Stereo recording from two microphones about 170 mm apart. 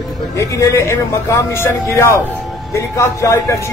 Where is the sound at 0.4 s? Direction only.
15° left (ahead or behind).